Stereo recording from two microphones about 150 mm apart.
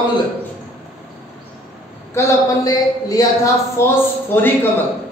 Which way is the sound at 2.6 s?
25° left (ahead or behind).